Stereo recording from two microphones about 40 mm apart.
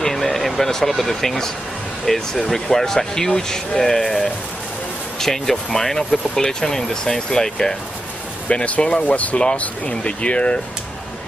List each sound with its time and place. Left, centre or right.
0.0 s speech: centre
8.5 s speech: left
9.6 s speech: left